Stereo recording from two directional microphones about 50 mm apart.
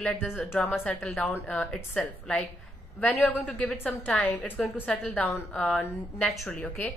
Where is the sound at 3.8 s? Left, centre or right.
Left.